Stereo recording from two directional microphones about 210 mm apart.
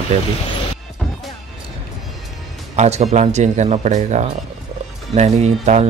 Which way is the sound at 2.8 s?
30° right (ahead or behind).